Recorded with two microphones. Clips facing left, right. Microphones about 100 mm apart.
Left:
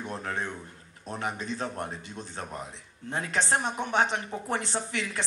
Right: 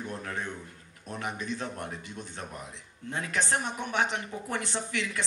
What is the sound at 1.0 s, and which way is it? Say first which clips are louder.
Speech: left 2 dB; 25° left (ahead or behind).